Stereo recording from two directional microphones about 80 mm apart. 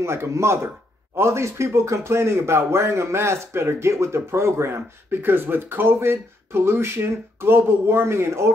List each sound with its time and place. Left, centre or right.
0.0 s speech: right